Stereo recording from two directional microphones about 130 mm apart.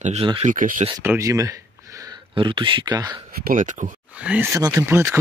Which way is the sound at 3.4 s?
85° right.